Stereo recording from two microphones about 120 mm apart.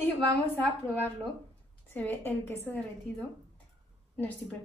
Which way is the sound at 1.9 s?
15° left (ahead or behind).